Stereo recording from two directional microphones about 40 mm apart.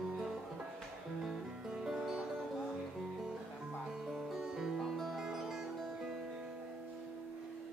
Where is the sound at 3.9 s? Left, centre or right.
Centre.